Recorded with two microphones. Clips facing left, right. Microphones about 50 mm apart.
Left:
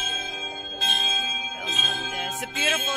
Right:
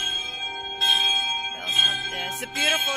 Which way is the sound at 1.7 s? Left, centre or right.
Centre.